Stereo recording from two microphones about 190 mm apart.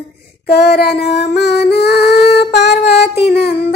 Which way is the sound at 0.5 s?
60° left (ahead or behind).